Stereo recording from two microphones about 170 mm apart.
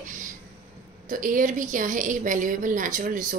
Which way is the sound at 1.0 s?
50° right (ahead or behind).